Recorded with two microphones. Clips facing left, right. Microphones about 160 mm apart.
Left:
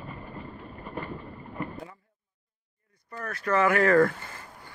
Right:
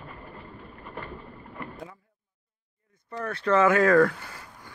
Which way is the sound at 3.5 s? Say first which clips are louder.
Right 2 dB; 20° right (ahead or behind).